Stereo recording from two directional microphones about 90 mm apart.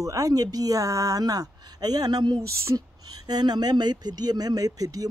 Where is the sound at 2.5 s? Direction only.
35° right (ahead or behind).